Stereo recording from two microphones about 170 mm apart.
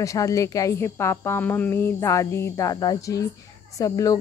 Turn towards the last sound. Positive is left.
turn(degrees=20)  # may be behind; listen again after turning